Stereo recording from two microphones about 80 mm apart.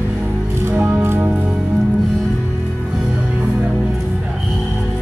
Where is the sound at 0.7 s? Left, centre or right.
Right.